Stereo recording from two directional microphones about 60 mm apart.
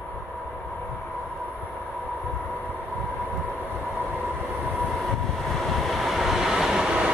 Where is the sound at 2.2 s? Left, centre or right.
Left.